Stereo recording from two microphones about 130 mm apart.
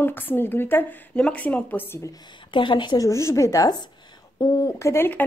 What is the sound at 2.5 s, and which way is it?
Speech, 40° left (ahead or behind).